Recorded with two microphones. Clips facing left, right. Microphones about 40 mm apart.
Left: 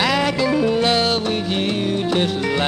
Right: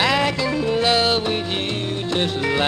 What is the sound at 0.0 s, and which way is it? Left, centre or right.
Music, centre.